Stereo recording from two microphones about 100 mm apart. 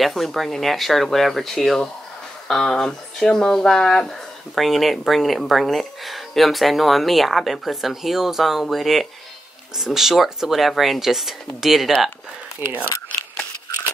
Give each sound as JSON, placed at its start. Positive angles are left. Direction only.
{"t": 0.0, "sound": "speech", "side_deg": 0}
{"t": 12.6, "sound": "speech", "side_deg": -20}